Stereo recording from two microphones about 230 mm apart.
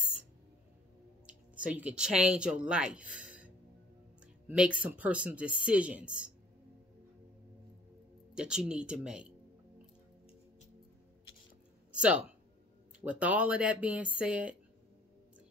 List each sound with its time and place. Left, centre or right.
1.2 s speech: centre
8.4 s speech: centre
11.9 s a sound: centre
13.0 s speech: centre